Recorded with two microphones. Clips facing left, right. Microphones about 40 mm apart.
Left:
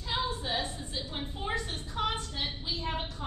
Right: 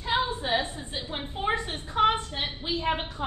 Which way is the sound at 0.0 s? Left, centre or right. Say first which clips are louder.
Right 6 dB; right.